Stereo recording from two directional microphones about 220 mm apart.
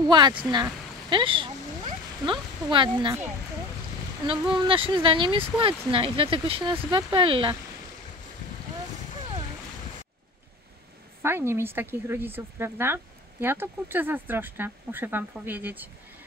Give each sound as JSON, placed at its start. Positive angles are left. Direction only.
{"t": 0.1, "sound": "speech", "side_deg": -20}
{"t": 4.3, "sound": "speech", "side_deg": -20}
{"t": 11.2, "sound": "speech", "side_deg": -10}